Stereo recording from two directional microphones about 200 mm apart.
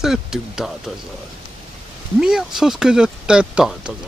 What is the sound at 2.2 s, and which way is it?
Speech, 5° right (ahead or behind).